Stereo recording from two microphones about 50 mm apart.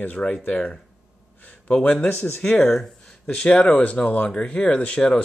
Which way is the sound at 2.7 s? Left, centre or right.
Centre.